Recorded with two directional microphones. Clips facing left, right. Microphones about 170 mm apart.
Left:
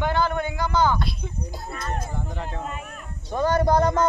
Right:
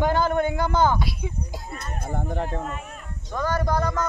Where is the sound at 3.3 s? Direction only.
25° left (ahead or behind).